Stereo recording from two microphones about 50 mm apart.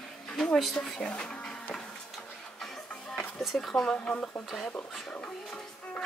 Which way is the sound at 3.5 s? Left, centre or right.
Centre.